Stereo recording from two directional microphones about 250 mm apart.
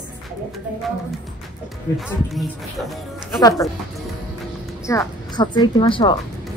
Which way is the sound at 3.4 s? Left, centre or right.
Centre.